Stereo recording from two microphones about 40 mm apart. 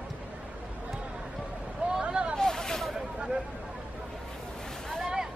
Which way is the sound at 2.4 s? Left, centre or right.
Centre.